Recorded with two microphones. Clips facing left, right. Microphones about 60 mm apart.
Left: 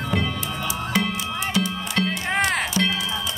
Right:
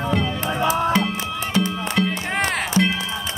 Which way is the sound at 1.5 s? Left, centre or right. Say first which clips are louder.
Right 4 dB; right.